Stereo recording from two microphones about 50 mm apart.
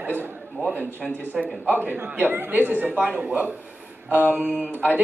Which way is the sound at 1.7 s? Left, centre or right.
Right.